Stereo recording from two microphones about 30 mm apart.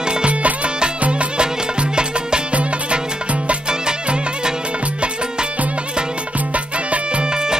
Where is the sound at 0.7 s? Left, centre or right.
Right.